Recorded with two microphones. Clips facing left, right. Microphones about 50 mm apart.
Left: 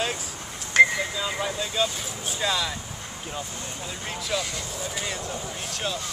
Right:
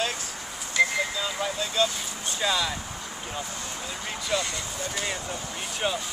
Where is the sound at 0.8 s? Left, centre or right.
Left.